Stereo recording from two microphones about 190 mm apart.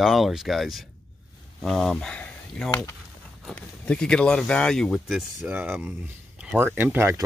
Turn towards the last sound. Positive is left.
turn(degrees=-15)  # may be behind; listen again after turning